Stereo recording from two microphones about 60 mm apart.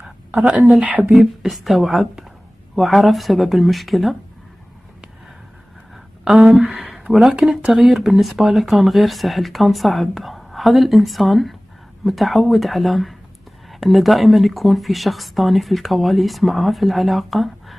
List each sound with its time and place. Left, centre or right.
0.0 s a woman's voice: centre
1.2 s speech: centre
6.2 s speech: centre